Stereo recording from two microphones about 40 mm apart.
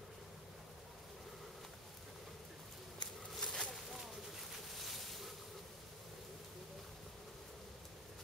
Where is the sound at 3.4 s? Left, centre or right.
Centre.